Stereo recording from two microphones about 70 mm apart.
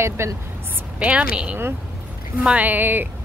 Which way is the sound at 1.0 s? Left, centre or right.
Centre.